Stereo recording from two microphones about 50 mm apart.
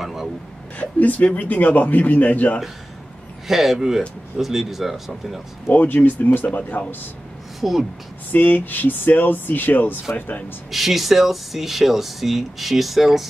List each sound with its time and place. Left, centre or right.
0.0 s a sound: centre
0.7 s speech: left
3.4 s speech: centre
5.7 s speech: left
7.6 s speech: centre
8.3 s speech: left
10.7 s speech: centre